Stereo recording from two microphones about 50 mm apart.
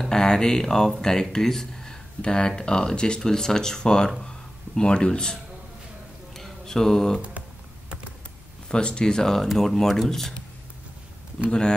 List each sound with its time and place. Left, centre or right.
0.0 s speech: centre
6.3 s mantra: centre
8.6 s speech: centre